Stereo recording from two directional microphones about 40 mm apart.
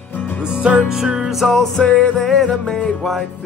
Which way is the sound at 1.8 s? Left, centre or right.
Left.